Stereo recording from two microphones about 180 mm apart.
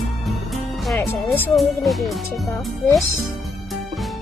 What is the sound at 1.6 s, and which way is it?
Speech, centre (ahead or behind).